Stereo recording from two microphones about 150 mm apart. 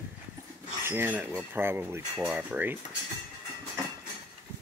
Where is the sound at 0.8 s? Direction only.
10° right (ahead or behind).